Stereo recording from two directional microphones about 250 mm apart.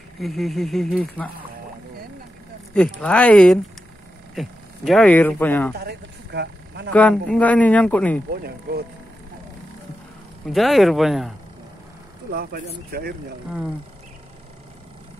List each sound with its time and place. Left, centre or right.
0.2 s speech: centre
2.7 s speech: centre
5.8 s a sound: right
6.9 s speech: centre
8.3 s speech: right
10.4 s speech: centre
12.3 s speech: right